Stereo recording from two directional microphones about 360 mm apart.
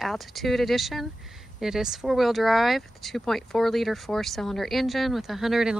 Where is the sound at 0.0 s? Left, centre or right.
Centre.